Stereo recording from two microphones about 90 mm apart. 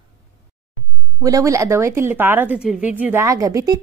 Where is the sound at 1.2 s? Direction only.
40° right (ahead or behind); by 3.2 s 20° right (ahead or behind).